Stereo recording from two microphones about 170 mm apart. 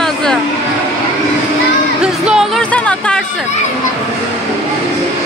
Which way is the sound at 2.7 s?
5° left (ahead or behind).